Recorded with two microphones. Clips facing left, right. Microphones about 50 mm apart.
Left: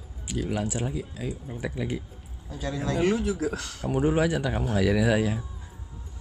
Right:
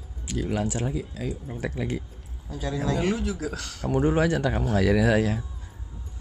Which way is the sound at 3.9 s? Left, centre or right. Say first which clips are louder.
Right 1 dB; centre.